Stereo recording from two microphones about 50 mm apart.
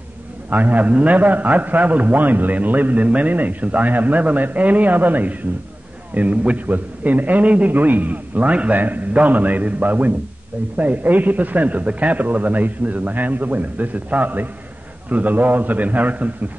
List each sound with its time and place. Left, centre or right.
0.5 s a man's voice: right